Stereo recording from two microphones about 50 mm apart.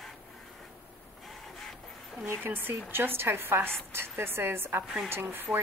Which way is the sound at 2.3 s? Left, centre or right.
Right.